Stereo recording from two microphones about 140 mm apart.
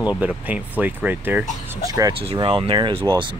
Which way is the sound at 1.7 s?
25° right (ahead or behind).